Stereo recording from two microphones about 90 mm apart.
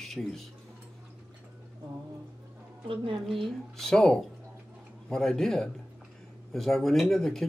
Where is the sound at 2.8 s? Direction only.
85° right.